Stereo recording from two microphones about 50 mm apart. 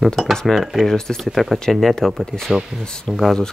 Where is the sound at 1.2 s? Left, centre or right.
Centre.